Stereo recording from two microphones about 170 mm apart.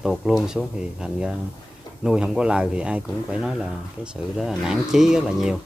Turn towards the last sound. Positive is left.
turn(degrees=-5)  # may be behind; listen again after turning